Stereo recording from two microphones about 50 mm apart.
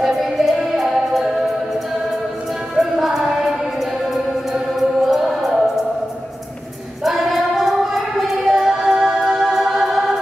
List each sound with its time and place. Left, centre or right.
0.0 s music: centre
2.7 s music: centre
4.7 s choir: centre
7.1 s choir: centre
9.3 s music: centre